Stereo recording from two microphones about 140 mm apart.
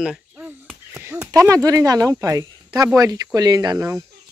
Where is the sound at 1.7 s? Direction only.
25° right (ahead or behind).